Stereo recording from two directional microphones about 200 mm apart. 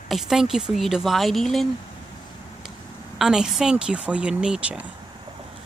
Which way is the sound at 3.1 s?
Centre (ahead or behind).